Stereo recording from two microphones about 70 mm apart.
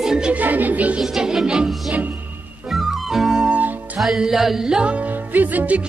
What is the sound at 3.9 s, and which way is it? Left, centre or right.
Music, centre.